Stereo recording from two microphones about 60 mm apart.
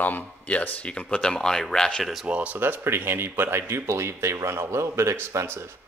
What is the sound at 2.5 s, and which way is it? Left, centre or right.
Speech, right.